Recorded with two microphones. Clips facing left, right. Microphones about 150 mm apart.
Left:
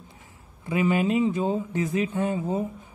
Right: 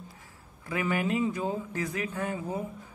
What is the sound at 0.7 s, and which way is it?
Speech, 20° left (ahead or behind).